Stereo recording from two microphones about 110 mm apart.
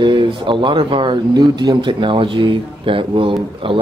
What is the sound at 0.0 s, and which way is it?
Speech, 50° right (ahead or behind).